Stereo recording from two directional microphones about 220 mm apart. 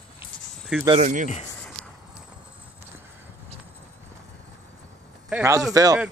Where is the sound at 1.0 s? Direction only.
35° right (ahead or behind).